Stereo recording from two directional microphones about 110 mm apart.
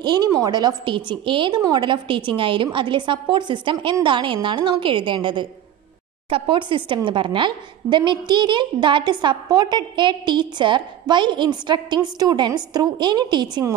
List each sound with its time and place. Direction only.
0.0 s a woman's voice: 40° right (ahead or behind)